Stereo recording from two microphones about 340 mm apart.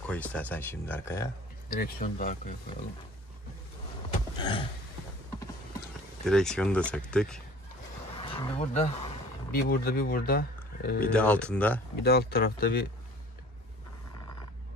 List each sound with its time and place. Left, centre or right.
0.1 s speech: centre
1.8 s speech: left
4.4 s a sound: centre
6.2 s speech: centre
8.2 s speech: centre
11.1 s speech: centre
12.0 s speech: left